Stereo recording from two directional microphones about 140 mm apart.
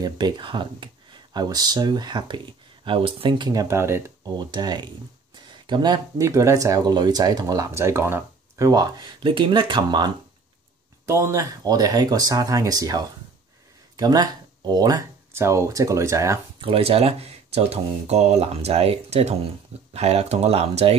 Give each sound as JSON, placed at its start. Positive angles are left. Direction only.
{"t": 0.0, "sound": "speech", "side_deg": -35}
{"t": 4.2, "sound": "speech", "side_deg": -30}
{"t": 11.1, "sound": "speech", "side_deg": -20}
{"t": 16.6, "sound": "speech", "side_deg": -40}